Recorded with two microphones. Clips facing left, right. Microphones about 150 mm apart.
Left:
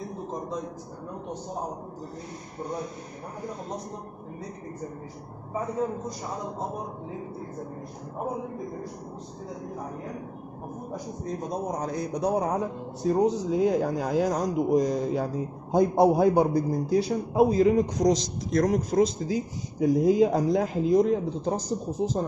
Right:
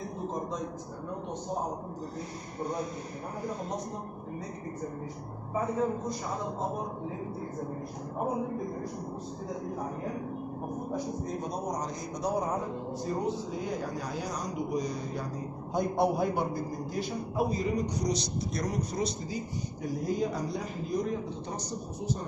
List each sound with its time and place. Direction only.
11.8 s speech: 60° left (ahead or behind)
13.0 s a man's voice: 90° left